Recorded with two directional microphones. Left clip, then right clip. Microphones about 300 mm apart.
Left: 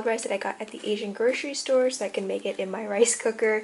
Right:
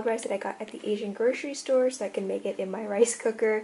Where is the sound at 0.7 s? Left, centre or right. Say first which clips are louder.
Left 2 dB; right.